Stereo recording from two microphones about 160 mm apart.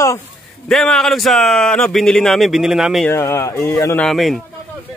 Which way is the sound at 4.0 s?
Centre (ahead or behind).